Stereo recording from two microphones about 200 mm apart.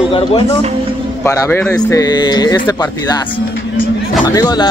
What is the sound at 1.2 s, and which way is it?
Speech, 15° left (ahead or behind).